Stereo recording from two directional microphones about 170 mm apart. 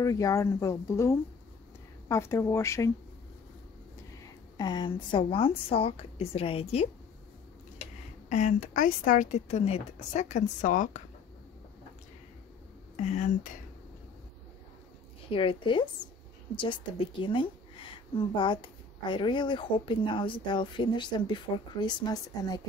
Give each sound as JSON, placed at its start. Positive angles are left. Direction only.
{"t": 0.0, "sound": "speech", "side_deg": 20}
{"t": 4.6, "sound": "a woman's voice", "side_deg": 25}
{"t": 8.3, "sound": "speech", "side_deg": 45}
{"t": 12.9, "sound": "speech", "side_deg": 45}
{"t": 15.2, "sound": "speech", "side_deg": 30}
{"t": 17.2, "sound": "speech", "side_deg": 30}